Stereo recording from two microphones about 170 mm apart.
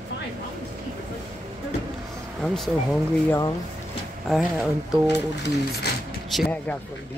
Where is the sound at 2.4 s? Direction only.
Centre (ahead or behind).